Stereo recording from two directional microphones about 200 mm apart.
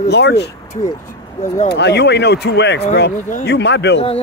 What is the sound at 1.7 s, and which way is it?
Speech, 55° left (ahead or behind).